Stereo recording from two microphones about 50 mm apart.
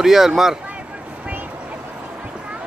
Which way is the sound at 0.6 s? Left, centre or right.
Right.